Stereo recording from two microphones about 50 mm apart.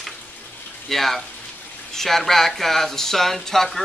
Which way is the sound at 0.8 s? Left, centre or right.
Centre.